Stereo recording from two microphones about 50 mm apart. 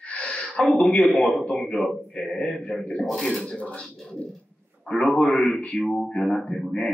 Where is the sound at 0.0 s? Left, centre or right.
Left.